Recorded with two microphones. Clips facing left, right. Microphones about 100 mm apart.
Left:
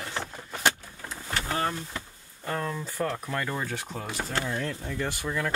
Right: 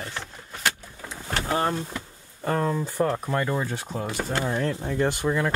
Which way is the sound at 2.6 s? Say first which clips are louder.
Right 6 dB; 25° right (ahead or behind).